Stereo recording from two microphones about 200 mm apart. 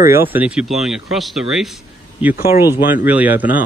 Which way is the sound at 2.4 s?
10° right (ahead or behind).